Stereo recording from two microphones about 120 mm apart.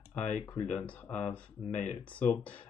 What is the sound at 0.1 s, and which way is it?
Speech, 10° left (ahead or behind).